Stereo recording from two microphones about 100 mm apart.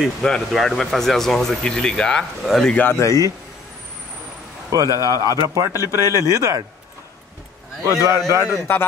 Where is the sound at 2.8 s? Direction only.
25° left (ahead or behind).